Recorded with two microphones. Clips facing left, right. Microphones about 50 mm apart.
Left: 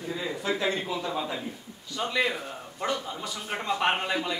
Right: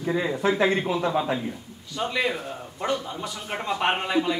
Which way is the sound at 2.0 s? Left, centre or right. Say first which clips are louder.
Right 2 dB; centre.